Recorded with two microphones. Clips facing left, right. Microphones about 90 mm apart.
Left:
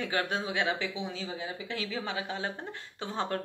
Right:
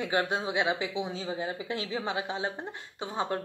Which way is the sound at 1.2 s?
35° right (ahead or behind).